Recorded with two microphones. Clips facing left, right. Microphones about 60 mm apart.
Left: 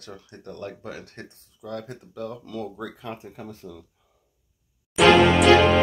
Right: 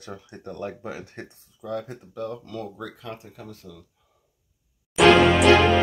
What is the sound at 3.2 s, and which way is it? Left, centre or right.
Speech, left.